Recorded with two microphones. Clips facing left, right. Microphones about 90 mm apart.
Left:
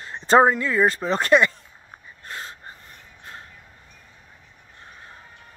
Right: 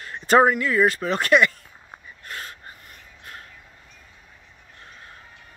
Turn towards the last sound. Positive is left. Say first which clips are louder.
# left 1 dB
turn(degrees=25)  # may be behind; listen again after turning